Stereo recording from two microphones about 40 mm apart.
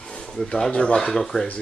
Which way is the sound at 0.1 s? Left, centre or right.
Left.